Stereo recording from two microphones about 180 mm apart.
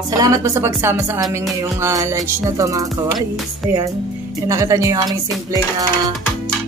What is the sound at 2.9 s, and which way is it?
Music, centre (ahead or behind).